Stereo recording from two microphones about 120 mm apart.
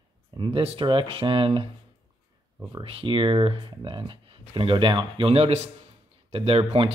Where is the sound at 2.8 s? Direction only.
50° right (ahead or behind).